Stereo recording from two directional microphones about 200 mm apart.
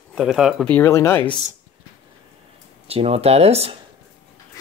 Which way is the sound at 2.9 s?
30° right (ahead or behind).